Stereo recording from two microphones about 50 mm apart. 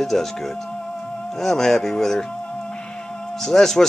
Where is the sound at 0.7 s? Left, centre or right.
Left.